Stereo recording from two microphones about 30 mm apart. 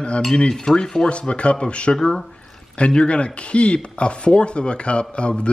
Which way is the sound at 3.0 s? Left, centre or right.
Left.